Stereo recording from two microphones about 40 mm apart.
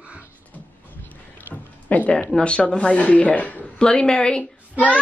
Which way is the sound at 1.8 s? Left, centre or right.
Left.